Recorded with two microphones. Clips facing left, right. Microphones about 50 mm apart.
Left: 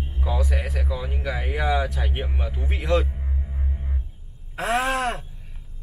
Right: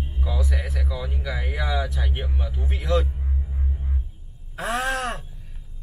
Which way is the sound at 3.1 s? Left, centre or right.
Centre.